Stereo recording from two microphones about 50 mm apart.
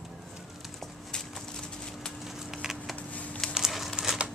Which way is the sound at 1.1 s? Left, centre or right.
Centre.